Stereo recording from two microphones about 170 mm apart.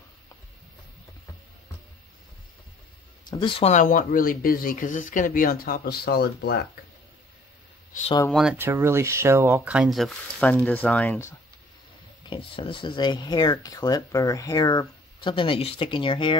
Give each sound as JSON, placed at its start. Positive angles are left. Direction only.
{"t": 3.3, "sound": "speech", "side_deg": 30}
{"t": 3.7, "sound": "speech", "side_deg": 55}
{"t": 8.3, "sound": "speech", "side_deg": 0}
{"t": 8.5, "sound": "speech", "side_deg": -15}
{"t": 12.3, "sound": "speech", "side_deg": 30}